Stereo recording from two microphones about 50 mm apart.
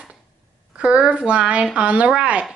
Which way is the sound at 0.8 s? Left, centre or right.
Right.